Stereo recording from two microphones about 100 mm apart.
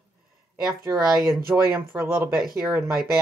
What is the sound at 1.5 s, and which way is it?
Speech, 25° right (ahead or behind).